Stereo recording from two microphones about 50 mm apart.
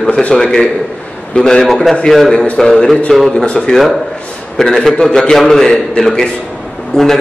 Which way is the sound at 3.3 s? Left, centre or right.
Left.